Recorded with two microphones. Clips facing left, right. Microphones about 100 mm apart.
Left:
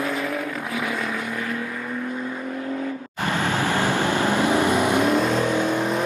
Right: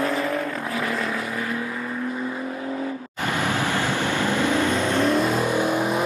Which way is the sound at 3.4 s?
20° right (ahead or behind).